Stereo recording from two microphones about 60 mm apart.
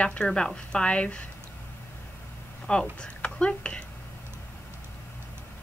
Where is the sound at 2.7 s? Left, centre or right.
Centre.